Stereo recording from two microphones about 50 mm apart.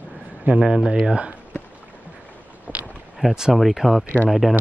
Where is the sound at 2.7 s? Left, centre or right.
Left.